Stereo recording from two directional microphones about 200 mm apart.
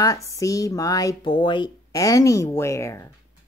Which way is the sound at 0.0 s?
15° left (ahead or behind).